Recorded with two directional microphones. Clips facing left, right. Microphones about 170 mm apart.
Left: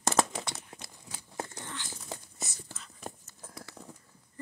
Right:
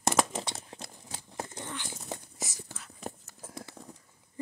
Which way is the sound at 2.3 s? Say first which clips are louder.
Right 3 dB; 90° right.